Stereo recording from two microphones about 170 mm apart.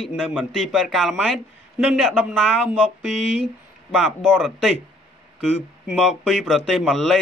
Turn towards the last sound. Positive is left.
turn(degrees=0)  # may be behind; listen again after turning